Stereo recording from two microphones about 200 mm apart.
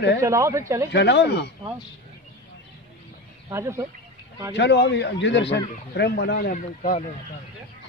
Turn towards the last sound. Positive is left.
turn(degrees=40)  # may be behind; listen again after turning